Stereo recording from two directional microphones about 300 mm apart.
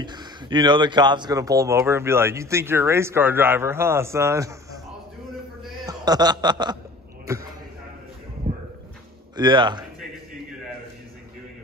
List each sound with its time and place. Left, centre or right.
0.0 s speech: centre
5.9 s chuckle: centre
8.5 s a sound: right
9.4 s speech: centre